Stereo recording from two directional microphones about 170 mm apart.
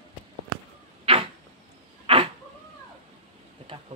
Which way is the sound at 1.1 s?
30° right (ahead or behind).